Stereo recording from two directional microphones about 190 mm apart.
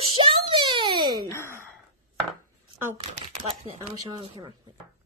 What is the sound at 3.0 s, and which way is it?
Camera, 30° right (ahead or behind).